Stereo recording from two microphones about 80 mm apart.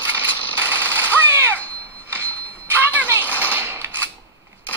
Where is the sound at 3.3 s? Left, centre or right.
Right.